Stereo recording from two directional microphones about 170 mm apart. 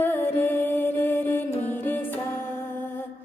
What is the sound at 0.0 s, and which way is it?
Music, 10° left (ahead or behind).